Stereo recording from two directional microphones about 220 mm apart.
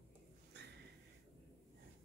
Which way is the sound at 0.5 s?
50° right (ahead or behind).